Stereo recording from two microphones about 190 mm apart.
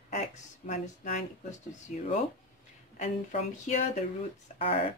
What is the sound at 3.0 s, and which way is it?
Speech, 40° left (ahead or behind).